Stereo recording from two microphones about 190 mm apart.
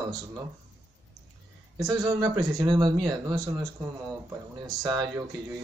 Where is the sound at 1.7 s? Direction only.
15° right (ahead or behind).